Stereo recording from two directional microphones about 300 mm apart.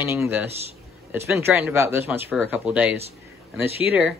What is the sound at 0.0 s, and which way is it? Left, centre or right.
Speech, centre.